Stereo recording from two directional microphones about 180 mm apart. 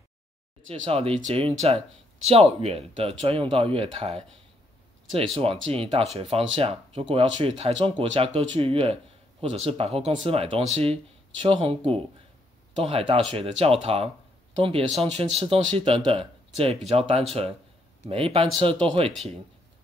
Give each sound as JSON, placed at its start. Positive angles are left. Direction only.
{"t": 0.7, "sound": "speech", "side_deg": -30}
{"t": 5.7, "sound": "speech", "side_deg": -30}